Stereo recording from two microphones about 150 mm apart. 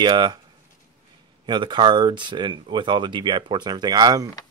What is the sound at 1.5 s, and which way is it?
Speech, 30° right (ahead or behind).